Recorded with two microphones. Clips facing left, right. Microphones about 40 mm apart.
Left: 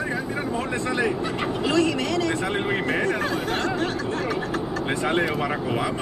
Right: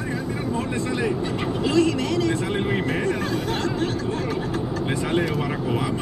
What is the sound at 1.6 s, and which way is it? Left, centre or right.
Speech, centre.